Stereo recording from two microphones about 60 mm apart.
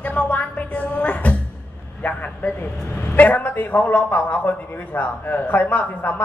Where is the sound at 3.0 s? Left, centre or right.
Left.